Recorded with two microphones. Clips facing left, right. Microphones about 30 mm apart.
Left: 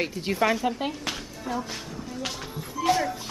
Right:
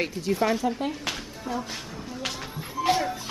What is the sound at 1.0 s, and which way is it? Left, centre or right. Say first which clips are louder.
Music: even; centre.